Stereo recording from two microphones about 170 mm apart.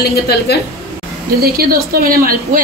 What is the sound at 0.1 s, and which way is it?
Speech, 75° left (ahead or behind).